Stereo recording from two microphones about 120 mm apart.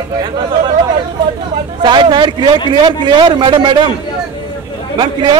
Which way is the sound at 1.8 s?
40° right (ahead or behind).